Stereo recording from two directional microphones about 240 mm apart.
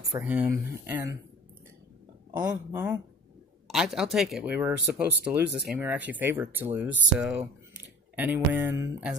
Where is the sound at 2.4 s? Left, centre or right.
Centre.